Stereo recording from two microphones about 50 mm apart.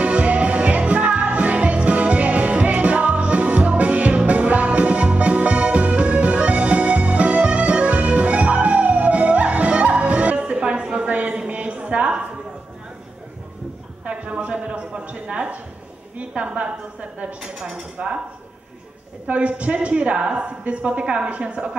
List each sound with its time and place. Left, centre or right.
0.0 s music: right
11.1 s a sound: right
14.0 s a sound: right
17.4 s speech: centre
17.9 s a woman's voice: right
19.2 s a woman's voice: right